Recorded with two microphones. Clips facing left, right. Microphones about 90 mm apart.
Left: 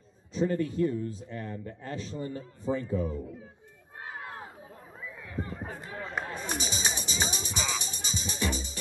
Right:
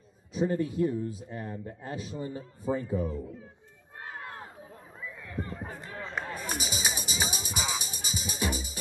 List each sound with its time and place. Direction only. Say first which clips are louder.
0.3 s a man's voice: even; 15° right (ahead or behind)
4.1 s a sound: left 1 dB; 5° left (ahead or behind)
6.3 s music: left 1 dB; 10° right (ahead or behind)